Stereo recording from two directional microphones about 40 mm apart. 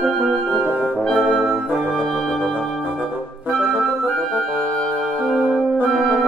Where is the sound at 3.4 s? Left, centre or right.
Right.